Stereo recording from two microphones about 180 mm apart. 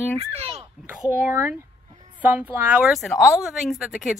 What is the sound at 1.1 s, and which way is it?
A woman's voice, 10° right (ahead or behind).